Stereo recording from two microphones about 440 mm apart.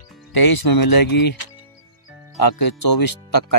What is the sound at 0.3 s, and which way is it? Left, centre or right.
Speech, left.